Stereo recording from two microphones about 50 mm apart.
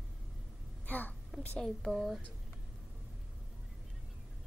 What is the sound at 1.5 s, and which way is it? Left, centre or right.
Speech, centre.